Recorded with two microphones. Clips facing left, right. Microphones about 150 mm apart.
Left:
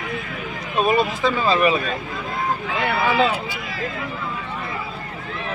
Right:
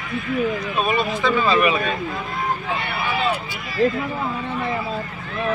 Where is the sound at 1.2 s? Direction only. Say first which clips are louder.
Right 3 dB; 35° left (ahead or behind).